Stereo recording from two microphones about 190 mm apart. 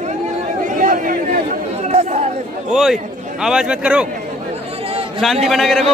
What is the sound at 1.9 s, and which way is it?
Chatter, 35° right (ahead or behind).